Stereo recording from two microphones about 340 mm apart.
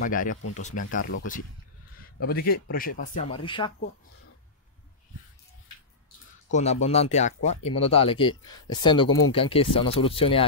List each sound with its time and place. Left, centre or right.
0.0 s speech: left
2.1 s speech: left
6.5 s speech: centre